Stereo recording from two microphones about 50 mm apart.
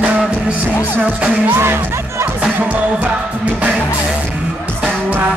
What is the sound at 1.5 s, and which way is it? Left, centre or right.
Speech, right.